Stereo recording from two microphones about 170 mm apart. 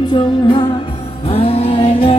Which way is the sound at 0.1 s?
25° left (ahead or behind).